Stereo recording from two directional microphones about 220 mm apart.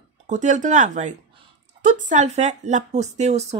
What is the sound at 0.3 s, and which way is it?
Speech, 35° right (ahead or behind).